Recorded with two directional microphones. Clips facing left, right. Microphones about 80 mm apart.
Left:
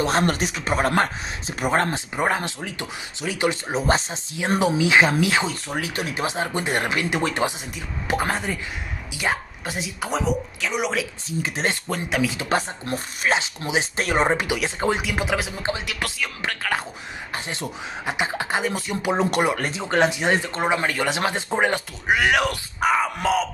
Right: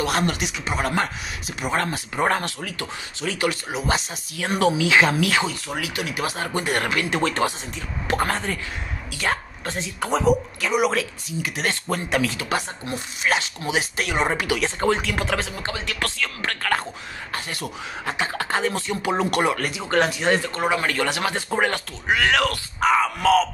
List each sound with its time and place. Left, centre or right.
0.0 s speech: left
2.1 s speech: centre
3.7 s speech: left
4.6 s speech: left
5.5 s speech: left
6.2 s speech: centre
11.4 s speech: left
11.9 s speech: centre
12.4 s speech: left
13.3 s speech: left
13.9 s speech: left
14.2 s speech: left
17.3 s speech: left